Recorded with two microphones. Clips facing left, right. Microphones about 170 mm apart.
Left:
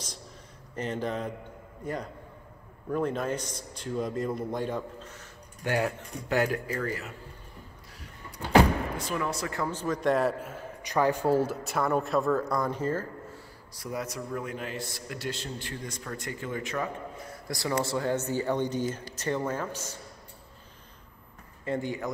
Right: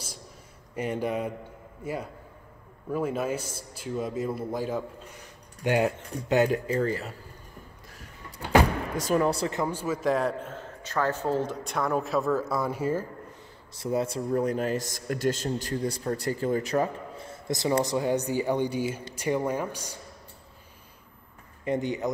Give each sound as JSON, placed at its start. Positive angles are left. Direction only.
{"t": 0.7, "sound": "a man's voice", "side_deg": -10}
{"t": 5.6, "sound": "speech", "side_deg": -20}
{"t": 8.9, "sound": "a man's voice", "side_deg": -40}
{"t": 9.5, "sound": "a man's voice", "side_deg": -15}
{"t": 13.7, "sound": "a man's voice", "side_deg": -25}
{"t": 21.6, "sound": "speech", "side_deg": -20}